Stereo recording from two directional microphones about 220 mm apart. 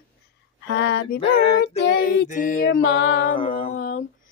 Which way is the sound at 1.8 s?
45° left (ahead or behind).